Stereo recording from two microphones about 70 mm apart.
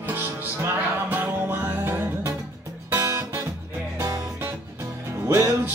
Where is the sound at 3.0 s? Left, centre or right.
Right.